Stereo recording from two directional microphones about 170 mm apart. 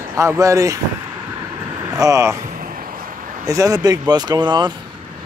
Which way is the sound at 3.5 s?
20° right (ahead or behind).